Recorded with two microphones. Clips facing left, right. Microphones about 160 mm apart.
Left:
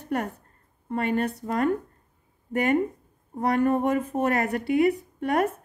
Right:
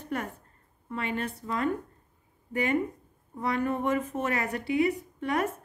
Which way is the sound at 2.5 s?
45° left (ahead or behind).